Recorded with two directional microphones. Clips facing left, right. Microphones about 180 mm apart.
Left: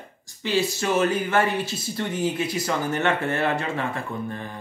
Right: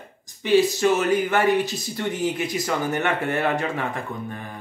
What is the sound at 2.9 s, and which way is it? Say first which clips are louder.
Speech: even; 15° right (ahead or behind).